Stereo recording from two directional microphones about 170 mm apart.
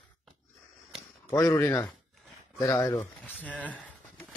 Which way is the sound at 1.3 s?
15° left (ahead or behind).